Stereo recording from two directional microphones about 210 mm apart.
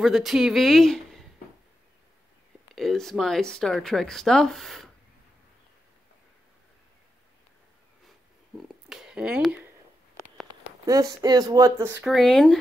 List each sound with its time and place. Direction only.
0.0 s speech: centre (ahead or behind)
2.7 s speech: centre (ahead or behind)
8.5 s a sound: centre (ahead or behind)
10.9 s speech: 15° right (ahead or behind)
12.1 s speech: centre (ahead or behind)